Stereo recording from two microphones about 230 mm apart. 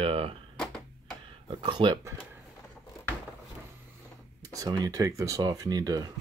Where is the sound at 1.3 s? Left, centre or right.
Right.